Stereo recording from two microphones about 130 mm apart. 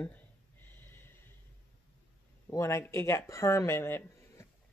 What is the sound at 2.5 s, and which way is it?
Speech, 20° left (ahead or behind).